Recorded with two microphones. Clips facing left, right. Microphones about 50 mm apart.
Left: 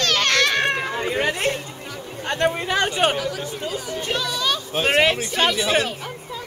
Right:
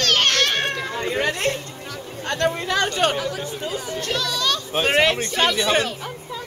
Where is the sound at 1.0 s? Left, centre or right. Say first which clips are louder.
Even; centre.